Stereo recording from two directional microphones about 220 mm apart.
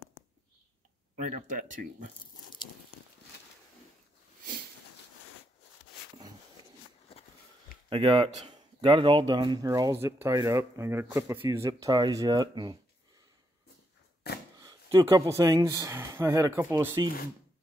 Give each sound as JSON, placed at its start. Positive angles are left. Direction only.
{"t": 1.1, "sound": "speech", "side_deg": -35}
{"t": 7.1, "sound": "a sound", "side_deg": 25}
{"t": 7.9, "sound": "speech", "side_deg": -25}
{"t": 14.6, "sound": "speech", "side_deg": -15}